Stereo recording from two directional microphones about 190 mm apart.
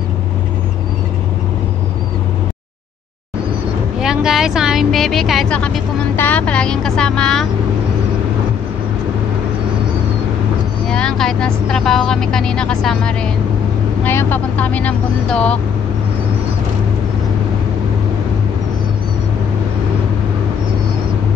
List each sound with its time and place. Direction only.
4.0 s speech: 5° right (ahead or behind)
10.9 s speech: 5° left (ahead or behind)